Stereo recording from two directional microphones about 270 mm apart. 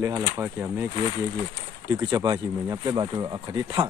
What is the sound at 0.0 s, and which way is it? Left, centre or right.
Speech, centre.